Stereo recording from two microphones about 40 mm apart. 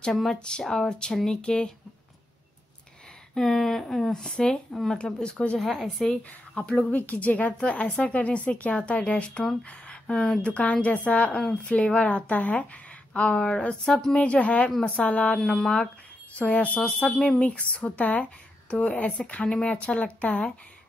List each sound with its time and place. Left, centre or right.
0.3 s speech: centre
3.3 s a sound: centre
4.1 s speech: centre
5.6 s speech: centre
6.6 s speech: left
13.4 s speech: centre
13.8 s a sound: centre
14.1 s speech: left
15.3 s a sound: centre
16.3 s speech: left